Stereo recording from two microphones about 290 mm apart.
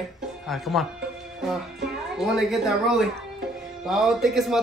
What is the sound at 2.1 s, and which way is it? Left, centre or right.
A man's voice, centre.